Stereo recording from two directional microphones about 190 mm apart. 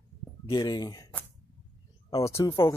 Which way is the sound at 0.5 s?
25° left (ahead or behind).